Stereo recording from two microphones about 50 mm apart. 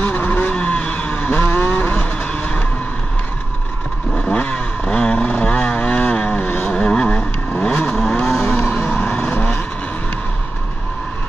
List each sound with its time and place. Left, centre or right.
0.0 s vehicle: left
1.3 s vehicle: left
2.0 s vehicle: centre
4.3 s vehicle: left
7.9 s vehicle: centre
8.6 s vehicle: left
9.3 s vehicle: left